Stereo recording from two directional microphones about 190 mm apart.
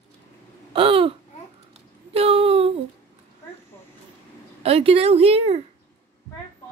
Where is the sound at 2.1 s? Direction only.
30° right (ahead or behind).